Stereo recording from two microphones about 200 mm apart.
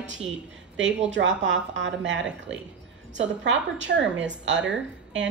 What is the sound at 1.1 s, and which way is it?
Speech, 65° right (ahead or behind).